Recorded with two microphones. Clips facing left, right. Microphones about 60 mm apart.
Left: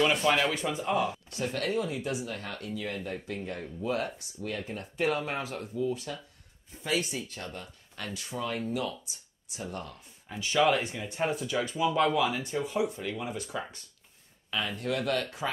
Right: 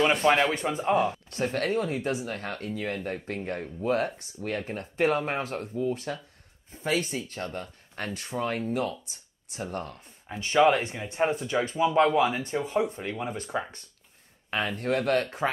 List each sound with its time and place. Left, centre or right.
0.1 s speech: right
1.3 s speech: right
10.4 s speech: right
12.4 s speech: right